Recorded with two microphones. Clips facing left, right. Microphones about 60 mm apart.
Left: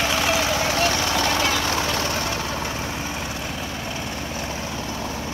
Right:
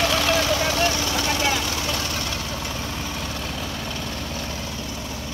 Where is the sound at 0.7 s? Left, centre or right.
Left.